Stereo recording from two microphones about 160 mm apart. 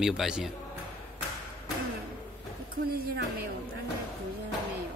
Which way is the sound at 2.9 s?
70° right (ahead or behind).